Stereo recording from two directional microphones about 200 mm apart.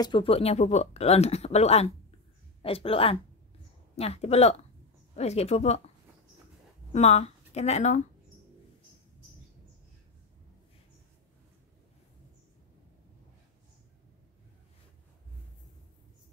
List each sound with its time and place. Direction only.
0.0 s speech: 25° left (ahead or behind)
6.9 s speech: 35° left (ahead or behind)